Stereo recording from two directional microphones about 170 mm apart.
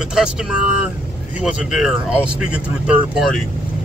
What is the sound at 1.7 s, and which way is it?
Speech, 5° right (ahead or behind).